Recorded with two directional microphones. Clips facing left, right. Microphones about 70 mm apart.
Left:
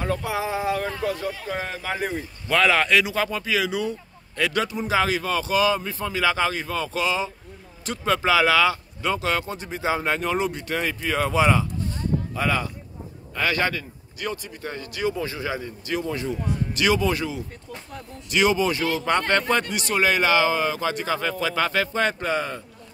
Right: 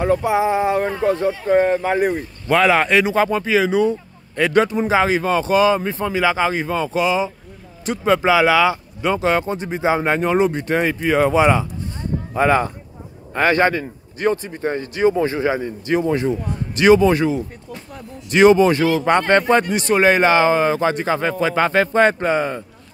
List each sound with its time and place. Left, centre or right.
0.0 s a man's voice: centre; by 18.9 s right
18.9 s a man's voice: right